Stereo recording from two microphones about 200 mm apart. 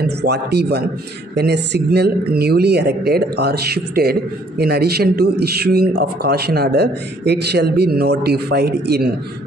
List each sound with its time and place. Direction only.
0.0 s speech: 55° right (ahead or behind)